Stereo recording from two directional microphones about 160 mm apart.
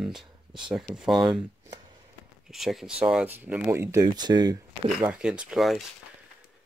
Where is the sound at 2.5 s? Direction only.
Centre (ahead or behind); by 4.5 s 25° right (ahead or behind).